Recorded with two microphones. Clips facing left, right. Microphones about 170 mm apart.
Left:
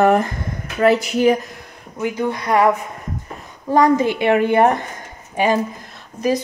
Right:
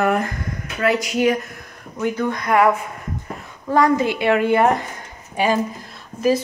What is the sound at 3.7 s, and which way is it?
A woman's voice, 15° left (ahead or behind).